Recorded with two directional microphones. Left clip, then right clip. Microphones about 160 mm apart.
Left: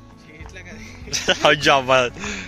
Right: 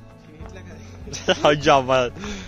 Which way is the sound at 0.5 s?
70° right (ahead or behind).